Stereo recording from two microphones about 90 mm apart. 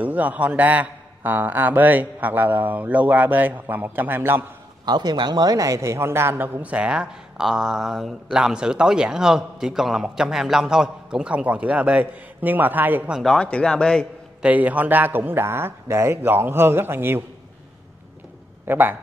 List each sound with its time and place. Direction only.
0.0 s a man's voice: 15° right (ahead or behind)
4.8 s a man's voice: 50° right (ahead or behind); by 13.1 s 20° right (ahead or behind)
13.2 s speech: 5° left (ahead or behind)
14.4 s a man's voice: 15° right (ahead or behind)
18.7 s a man's voice: 25° right (ahead or behind)